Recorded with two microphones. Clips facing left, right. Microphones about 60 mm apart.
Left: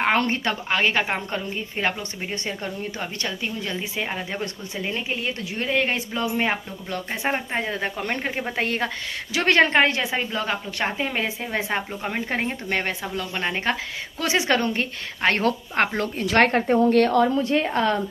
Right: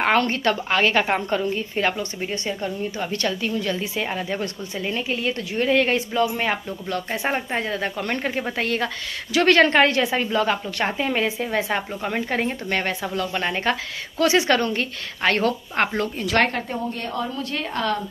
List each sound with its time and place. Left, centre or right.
0.1 s a woman's voice: centre
0.7 s a woman's voice: centre
1.8 s a woman's voice: centre
2.3 s speech: left
3.1 s a woman's voice: centre
8.5 s a woman's voice: left
15.4 s speech: left
16.9 s speech: left
17.4 s a woman's voice: left